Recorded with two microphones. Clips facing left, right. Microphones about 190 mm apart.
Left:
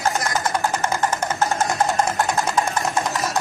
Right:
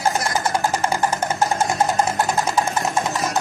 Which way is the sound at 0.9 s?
10° right (ahead or behind).